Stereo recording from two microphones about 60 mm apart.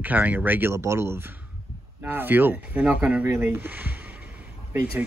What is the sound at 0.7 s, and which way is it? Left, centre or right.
Speech, right.